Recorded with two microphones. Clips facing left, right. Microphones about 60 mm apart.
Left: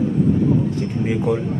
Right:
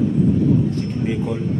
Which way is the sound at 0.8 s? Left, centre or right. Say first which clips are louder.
Left 1 dB; centre.